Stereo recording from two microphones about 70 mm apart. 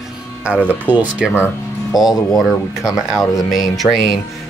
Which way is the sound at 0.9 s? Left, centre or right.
Right.